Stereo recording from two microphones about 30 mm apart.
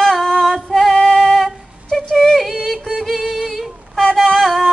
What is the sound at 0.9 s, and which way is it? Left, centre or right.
Music, centre.